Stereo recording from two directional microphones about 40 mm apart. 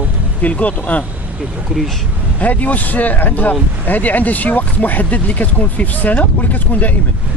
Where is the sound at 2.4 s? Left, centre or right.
Left.